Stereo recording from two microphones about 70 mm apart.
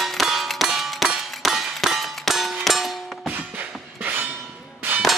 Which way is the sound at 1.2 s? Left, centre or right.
Centre.